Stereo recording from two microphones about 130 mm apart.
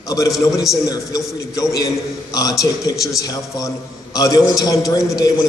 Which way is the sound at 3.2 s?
25° left (ahead or behind).